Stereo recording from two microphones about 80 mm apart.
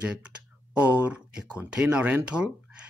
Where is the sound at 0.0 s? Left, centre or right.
Centre.